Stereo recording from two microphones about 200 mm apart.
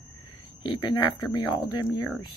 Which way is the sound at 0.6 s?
20° left (ahead or behind).